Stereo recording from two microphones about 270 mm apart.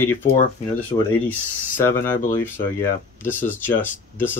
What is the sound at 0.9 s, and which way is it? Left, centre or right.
Speech, centre.